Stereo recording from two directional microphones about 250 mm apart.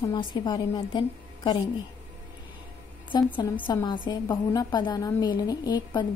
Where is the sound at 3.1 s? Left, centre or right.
Centre.